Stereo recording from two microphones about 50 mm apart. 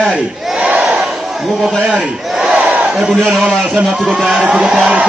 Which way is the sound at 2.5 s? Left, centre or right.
Right.